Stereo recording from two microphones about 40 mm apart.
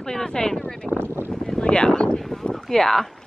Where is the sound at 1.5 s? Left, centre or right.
Left.